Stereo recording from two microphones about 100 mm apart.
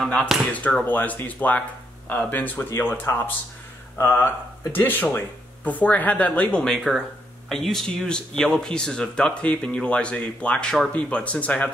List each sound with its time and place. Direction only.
0.0 s speech: 10° left (ahead or behind)